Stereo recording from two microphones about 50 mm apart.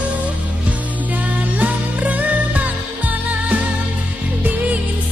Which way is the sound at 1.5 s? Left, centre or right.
Right.